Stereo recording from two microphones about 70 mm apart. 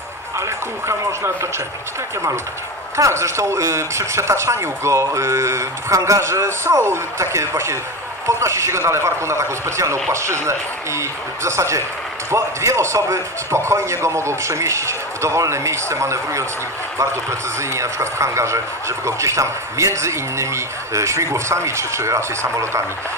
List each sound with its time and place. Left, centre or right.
0.4 s a man's voice: right
3.0 s a man's voice: right